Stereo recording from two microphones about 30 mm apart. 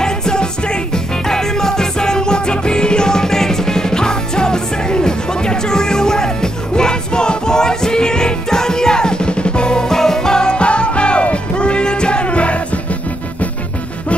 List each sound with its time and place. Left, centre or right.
0.0 s music: left
9.8 s music: centre; by 12.8 s left